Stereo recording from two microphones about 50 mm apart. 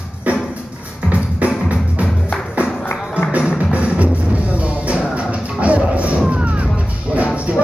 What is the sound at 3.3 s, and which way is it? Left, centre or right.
Music, right.